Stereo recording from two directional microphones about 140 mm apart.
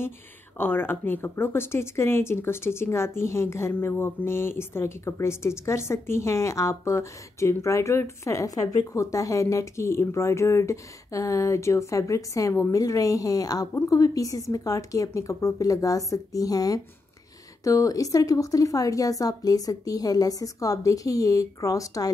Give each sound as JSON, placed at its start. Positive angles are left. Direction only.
{"t": 0.6, "sound": "speech", "side_deg": 15}